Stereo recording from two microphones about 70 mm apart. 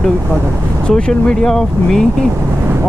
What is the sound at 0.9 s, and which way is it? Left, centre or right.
Speech, centre.